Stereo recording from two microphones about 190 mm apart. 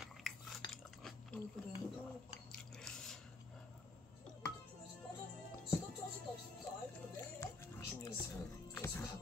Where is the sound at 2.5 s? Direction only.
5° left (ahead or behind).